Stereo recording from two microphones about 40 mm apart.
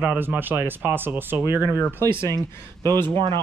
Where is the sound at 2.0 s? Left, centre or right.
Left.